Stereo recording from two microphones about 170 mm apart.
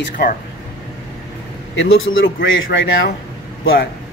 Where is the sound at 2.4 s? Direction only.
65° left (ahead or behind).